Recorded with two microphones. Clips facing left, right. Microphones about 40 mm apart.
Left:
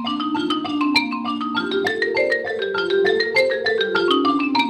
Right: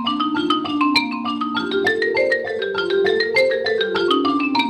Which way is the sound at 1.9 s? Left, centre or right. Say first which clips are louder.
Right 1 dB; centre.